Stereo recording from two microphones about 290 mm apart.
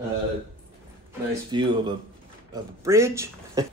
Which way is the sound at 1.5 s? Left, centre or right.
Centre.